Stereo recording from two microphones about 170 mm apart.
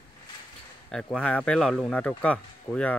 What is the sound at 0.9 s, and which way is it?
Speech, 5° left (ahead or behind).